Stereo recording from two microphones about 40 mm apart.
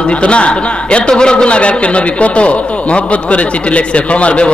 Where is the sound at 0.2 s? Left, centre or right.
Left.